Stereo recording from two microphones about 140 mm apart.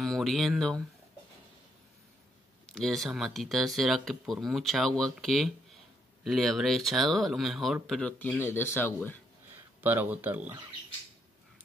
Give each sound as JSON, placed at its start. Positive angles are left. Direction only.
{"t": 0.0, "sound": "speech", "side_deg": 0}
{"t": 2.6, "sound": "speech", "side_deg": 0}
{"t": 8.5, "sound": "speech", "side_deg": 15}
{"t": 9.8, "sound": "speech", "side_deg": -15}